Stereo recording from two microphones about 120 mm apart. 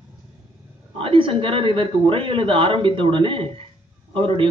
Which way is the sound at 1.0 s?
45° right (ahead or behind).